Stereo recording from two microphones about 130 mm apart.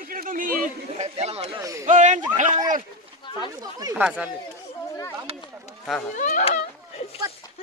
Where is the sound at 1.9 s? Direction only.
70° right (ahead or behind).